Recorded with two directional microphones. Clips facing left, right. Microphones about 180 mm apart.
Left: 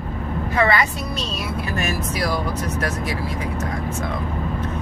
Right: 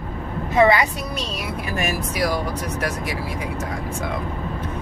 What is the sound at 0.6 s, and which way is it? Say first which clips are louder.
Speech: right 4 dB; 15° right (ahead or behind).